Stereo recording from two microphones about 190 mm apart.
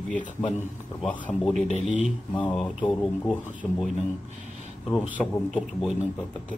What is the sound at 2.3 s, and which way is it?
Speech, 10° left (ahead or behind).